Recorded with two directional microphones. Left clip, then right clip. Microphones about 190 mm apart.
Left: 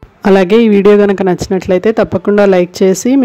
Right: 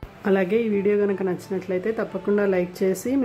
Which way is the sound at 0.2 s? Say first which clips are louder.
Left 14 dB; 55° left (ahead or behind).